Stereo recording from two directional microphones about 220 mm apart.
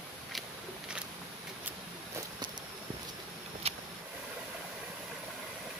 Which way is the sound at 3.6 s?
30° right (ahead or behind).